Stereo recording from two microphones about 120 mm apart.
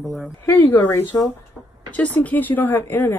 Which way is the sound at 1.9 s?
10° left (ahead or behind).